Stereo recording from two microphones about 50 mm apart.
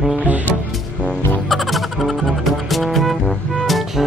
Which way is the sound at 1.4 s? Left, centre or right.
Centre.